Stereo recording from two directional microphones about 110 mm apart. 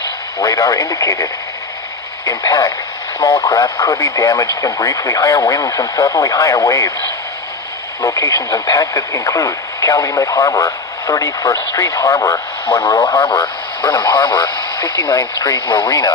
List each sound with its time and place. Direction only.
0.4 s speech: 30° left (ahead or behind)
8.0 s speech: 30° left (ahead or behind)
12.6 s speech: 55° left (ahead or behind)